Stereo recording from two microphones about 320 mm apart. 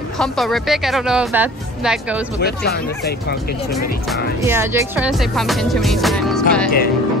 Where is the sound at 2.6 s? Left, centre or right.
Left.